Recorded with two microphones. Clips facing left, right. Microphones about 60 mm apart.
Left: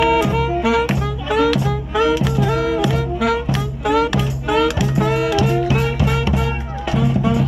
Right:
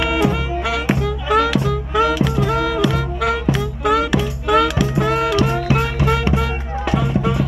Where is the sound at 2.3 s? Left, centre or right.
Right.